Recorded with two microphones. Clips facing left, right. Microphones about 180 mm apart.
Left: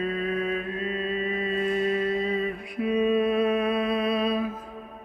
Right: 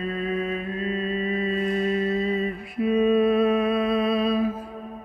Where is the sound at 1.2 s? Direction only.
45° right (ahead or behind).